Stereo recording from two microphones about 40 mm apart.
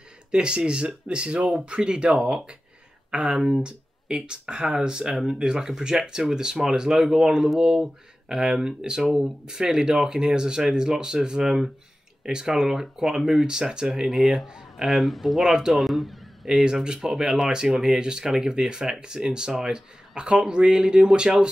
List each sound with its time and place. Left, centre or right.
0.3 s speech: right
12.2 s speech: centre
15.5 s speech: centre
15.8 s a sound: centre
16.6 s speech: centre